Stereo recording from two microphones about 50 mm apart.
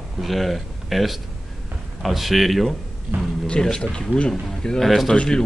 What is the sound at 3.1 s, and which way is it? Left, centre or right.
Speech, right.